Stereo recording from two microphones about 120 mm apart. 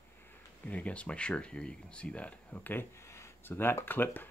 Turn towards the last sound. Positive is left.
turn(degrees=15)  # may be behind; listen again after turning